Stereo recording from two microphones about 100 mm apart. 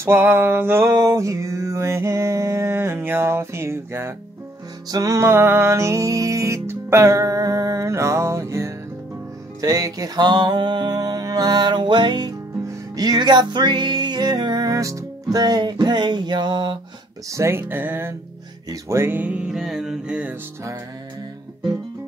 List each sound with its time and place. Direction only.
0.0 s music: 25° right (ahead or behind)
4.9 s music: 35° right (ahead or behind)
17.3 s music: 25° right (ahead or behind)